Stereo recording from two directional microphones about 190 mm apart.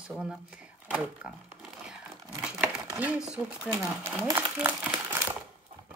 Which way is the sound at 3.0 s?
5° right (ahead or behind).